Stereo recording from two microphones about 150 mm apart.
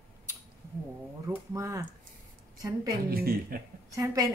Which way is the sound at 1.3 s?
20° right (ahead or behind).